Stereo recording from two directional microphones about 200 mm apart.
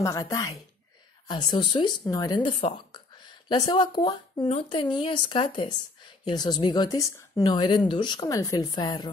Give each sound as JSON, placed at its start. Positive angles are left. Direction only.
{"t": 0.0, "sound": "speech", "side_deg": 15}